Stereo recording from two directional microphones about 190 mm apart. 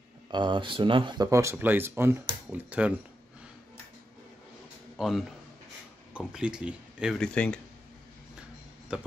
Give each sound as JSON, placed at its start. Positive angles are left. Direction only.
{"t": 0.3, "sound": "speech", "side_deg": -25}
{"t": 4.9, "sound": "a man's voice", "side_deg": 0}
{"t": 8.9, "sound": "speech", "side_deg": -5}